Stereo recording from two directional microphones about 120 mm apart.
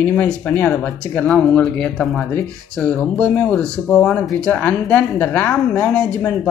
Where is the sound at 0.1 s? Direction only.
15° left (ahead or behind).